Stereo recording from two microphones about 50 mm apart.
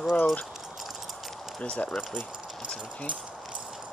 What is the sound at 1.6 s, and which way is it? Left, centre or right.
Speech, left.